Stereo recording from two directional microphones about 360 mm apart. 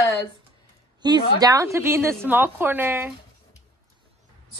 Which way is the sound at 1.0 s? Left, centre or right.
Centre.